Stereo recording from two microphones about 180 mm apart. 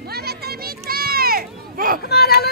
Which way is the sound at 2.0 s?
60° left (ahead or behind).